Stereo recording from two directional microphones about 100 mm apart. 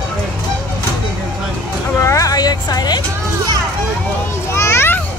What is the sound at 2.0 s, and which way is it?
Vehicle, 35° left (ahead or behind).